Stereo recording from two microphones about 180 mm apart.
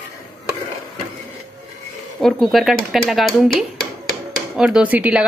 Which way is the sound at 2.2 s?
Centre (ahead or behind).